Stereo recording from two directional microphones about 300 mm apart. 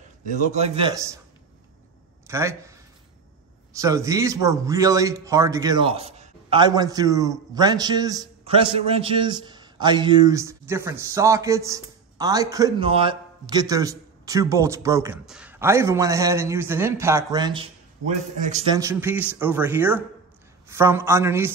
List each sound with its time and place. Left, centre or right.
0.3 s a man's voice: right
2.2 s speech: centre
3.7 s speech: centre
18.8 s speech: centre